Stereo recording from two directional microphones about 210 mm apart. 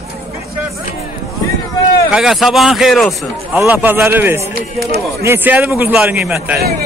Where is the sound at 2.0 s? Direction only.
Centre (ahead or behind).